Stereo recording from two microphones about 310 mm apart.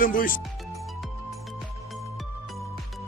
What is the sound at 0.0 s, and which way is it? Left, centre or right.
Speech, left.